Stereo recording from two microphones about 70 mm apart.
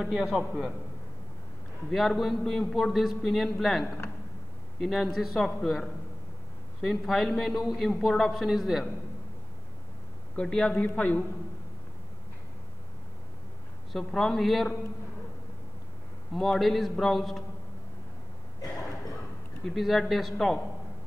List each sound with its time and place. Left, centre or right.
0.0 s a man's voice: centre
1.9 s a man's voice: centre
10.3 s a man's voice: centre
13.9 s a man's voice: centre
16.3 s a man's voice: centre
19.6 s a man's voice: centre